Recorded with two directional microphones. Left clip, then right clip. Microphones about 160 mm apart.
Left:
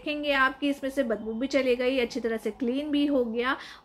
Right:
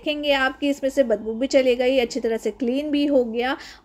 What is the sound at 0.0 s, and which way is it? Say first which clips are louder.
A woman's voice: right 4 dB; 35° right (ahead or behind).